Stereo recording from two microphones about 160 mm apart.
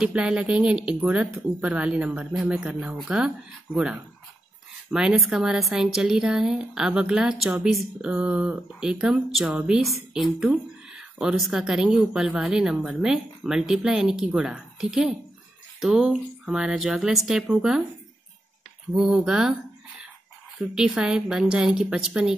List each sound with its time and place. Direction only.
0.0 s speech: 5° right (ahead or behind)
18.9 s speech: 5° right (ahead or behind)
20.7 s speech: 5° right (ahead or behind)